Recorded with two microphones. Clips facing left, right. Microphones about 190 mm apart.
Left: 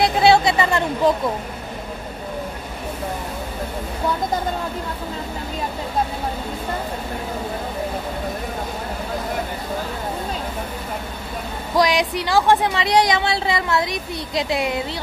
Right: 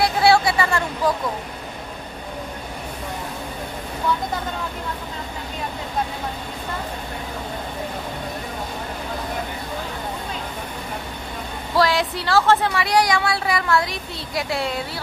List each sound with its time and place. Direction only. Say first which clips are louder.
0.0 s speech: left 2 dB; 20° left (ahead or behind)
11.7 s speech: left 1 dB; 15° left (ahead or behind)